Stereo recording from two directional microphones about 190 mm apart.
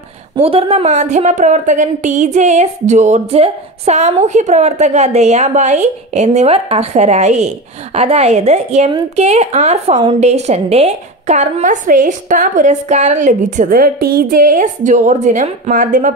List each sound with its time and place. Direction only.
0.4 s speech: 30° right (ahead or behind)